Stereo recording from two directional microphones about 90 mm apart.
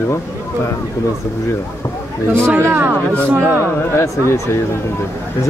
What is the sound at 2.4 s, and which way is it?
Speech, 25° right (ahead or behind).